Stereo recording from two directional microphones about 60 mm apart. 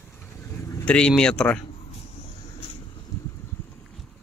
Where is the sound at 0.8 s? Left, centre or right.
Centre.